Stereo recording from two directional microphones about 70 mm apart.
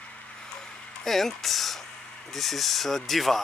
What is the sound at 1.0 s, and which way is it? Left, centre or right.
Speech, centre.